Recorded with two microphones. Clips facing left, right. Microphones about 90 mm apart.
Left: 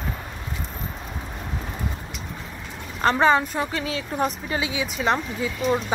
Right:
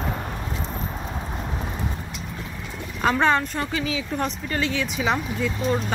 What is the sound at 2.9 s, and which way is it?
A woman's voice, 5° left (ahead or behind).